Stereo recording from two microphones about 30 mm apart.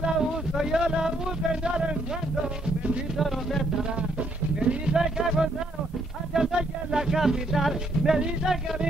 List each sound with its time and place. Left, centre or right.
0.6 s speech: right
3.2 s music: centre
4.6 s music: right
4.9 s music: right
6.3 s a sound: right
7.2 s music: centre